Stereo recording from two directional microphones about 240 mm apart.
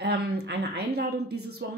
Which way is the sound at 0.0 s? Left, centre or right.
Right.